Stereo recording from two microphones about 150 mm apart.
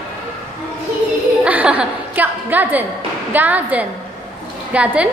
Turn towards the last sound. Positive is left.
turn(degrees=-10)  # may be behind; listen again after turning